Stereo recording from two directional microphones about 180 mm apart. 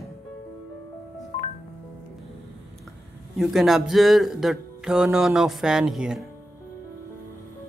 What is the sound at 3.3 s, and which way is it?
Speech, centre (ahead or behind).